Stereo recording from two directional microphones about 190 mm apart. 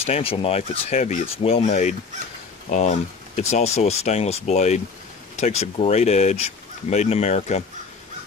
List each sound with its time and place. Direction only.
0.0 s speech: 30° left (ahead or behind)
3.3 s speech: 35° left (ahead or behind)